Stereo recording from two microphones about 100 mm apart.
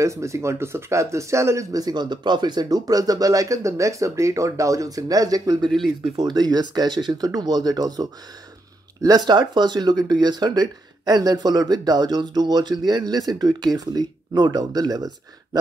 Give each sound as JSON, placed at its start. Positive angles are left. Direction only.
{"t": 0.0, "sound": "speech", "side_deg": -30}
{"t": 5.7, "sound": "speech", "side_deg": 0}
{"t": 6.1, "sound": "speech", "side_deg": -45}